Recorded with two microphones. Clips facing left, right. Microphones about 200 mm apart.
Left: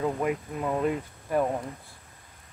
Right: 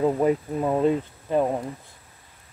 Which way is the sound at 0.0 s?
30° right (ahead or behind).